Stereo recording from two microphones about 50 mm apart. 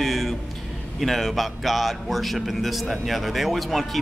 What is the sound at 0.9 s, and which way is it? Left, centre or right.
A man's voice, centre.